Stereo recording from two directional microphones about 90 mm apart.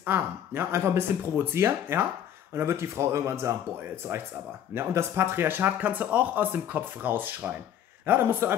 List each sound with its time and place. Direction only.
0.0 s speech: 25° right (ahead or behind)
4.7 s speech: 30° right (ahead or behind)